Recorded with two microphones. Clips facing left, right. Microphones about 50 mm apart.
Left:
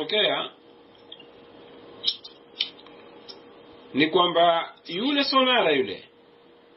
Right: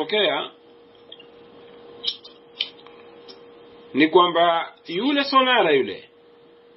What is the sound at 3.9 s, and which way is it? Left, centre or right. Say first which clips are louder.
Speech: right 5 dB; centre.